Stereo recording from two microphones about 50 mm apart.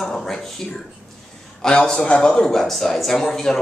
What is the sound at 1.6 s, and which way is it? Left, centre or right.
Speech, centre.